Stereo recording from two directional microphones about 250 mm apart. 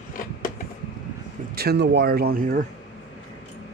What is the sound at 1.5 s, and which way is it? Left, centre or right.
Speech, right.